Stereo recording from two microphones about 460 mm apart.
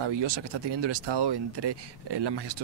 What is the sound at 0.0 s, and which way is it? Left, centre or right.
Speech, right.